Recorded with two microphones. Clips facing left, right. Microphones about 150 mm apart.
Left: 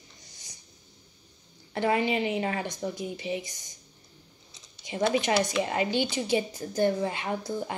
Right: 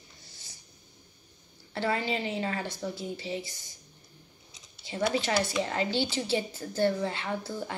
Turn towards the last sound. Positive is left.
turn(degrees=15)  # may be behind; listen again after turning